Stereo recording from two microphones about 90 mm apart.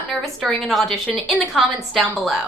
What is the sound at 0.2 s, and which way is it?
A woman's voice, centre (ahead or behind).